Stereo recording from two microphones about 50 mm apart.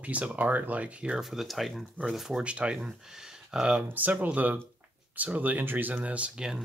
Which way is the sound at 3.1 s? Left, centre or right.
Centre.